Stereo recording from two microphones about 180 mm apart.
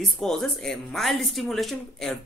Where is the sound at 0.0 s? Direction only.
Centre (ahead or behind).